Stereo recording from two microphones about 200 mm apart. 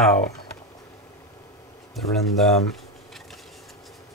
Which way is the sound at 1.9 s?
Centre (ahead or behind).